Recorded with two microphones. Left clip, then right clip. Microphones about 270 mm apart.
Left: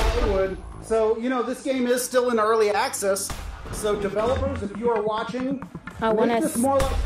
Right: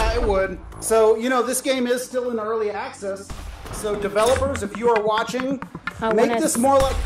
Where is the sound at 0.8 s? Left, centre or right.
Right.